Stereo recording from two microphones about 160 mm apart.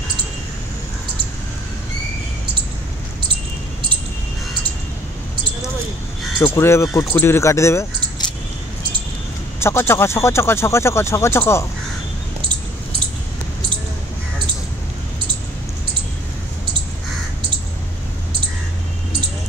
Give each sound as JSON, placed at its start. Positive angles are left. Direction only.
{"t": 6.4, "sound": "speech", "side_deg": 15}
{"t": 9.6, "sound": "speech", "side_deg": 15}